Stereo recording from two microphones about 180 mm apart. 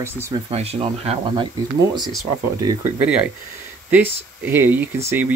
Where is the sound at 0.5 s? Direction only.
35° right (ahead or behind).